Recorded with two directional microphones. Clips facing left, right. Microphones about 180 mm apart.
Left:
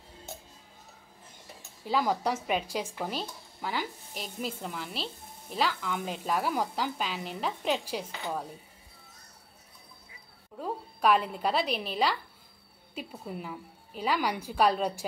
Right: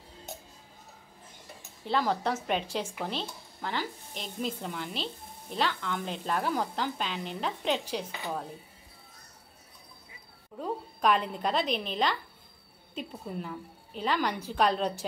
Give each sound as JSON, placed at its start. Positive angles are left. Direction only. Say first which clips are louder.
{"t": 1.9, "sound": "a woman's voice", "louder": "even", "side_deg": 5}
{"t": 10.6, "sound": "a woman's voice", "louder": "even", "side_deg": 5}